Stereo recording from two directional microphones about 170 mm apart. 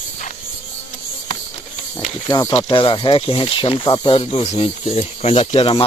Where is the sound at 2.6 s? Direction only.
30° left (ahead or behind).